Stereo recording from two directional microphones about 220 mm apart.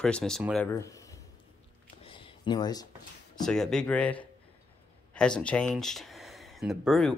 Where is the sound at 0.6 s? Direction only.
10° left (ahead or behind).